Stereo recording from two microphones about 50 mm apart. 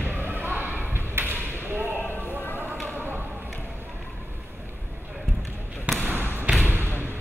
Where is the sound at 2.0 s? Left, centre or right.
Left.